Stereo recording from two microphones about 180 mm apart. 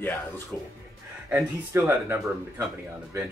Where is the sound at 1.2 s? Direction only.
15° right (ahead or behind).